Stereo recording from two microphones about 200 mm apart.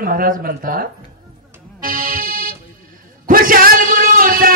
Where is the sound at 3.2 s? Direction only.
45° right (ahead or behind).